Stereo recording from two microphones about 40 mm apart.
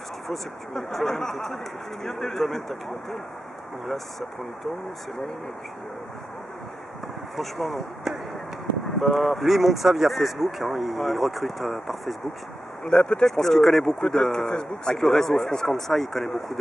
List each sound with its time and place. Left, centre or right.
0.3 s speech: centre
7.3 s speech: centre
12.8 s speech: left
13.3 s speech: centre
15.0 s speech: centre